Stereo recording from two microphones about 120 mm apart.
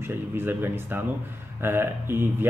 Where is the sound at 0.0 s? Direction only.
20° right (ahead or behind).